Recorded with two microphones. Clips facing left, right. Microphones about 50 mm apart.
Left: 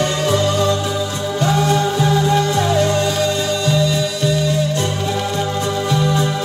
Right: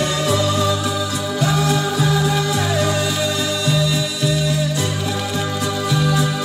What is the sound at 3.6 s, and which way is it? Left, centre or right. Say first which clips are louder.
Music: left 2 dB; centre.